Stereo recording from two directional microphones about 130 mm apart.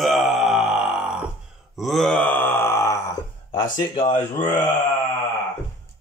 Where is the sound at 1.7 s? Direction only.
Centre (ahead or behind); by 2.9 s 20° left (ahead or behind).